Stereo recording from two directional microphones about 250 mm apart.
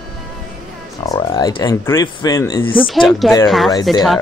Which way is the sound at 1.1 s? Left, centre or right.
Centre.